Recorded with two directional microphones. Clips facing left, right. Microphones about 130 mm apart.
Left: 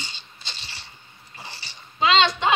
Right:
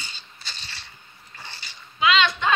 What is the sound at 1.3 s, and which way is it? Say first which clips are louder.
Dog: left 2 dB; 30° left (ahead or behind).